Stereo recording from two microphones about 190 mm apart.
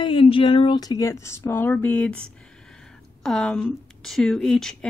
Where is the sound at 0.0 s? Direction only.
25° left (ahead or behind).